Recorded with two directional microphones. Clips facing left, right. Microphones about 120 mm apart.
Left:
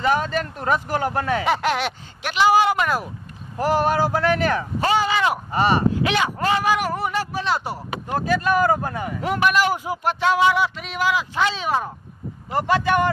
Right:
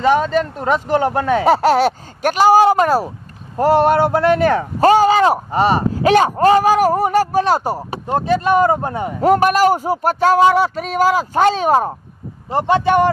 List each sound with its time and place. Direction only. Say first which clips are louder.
0.0 s speech: right 6 dB; 25° right (ahead or behind)
1.4 s a man's voice: right 9 dB; 40° right (ahead or behind)
3.5 s speech: right 7 dB; 25° right (ahead or behind)
4.7 s a man's voice: right 11 dB; 40° right (ahead or behind)
5.5 s speech: right 4 dB; 25° right (ahead or behind)
6.0 s a man's voice: right 10 dB; 40° right (ahead or behind); by 9.1 s 25° right (ahead or behind)
9.2 s a man's voice: right 8 dB; 40° right (ahead or behind)